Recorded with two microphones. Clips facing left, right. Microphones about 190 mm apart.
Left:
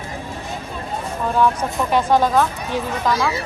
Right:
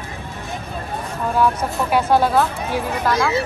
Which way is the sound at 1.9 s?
10° right (ahead or behind).